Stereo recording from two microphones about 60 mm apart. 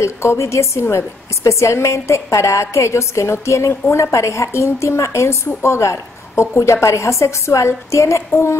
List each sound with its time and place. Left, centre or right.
0.0 s a woman's voice: left